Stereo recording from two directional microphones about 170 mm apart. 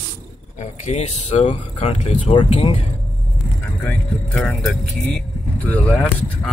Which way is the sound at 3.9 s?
Centre (ahead or behind).